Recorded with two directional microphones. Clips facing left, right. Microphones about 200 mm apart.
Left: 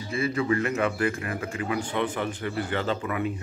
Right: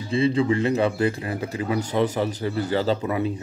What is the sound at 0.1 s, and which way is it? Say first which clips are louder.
A man's voice: right 5 dB; 30° right (ahead or behind).